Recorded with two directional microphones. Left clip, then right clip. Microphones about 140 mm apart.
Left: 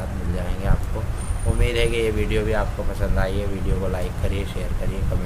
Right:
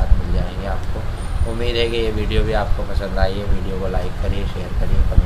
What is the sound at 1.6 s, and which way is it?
Speech, 40° left (ahead or behind).